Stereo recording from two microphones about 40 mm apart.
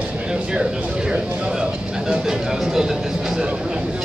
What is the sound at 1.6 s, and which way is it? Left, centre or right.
Music, centre.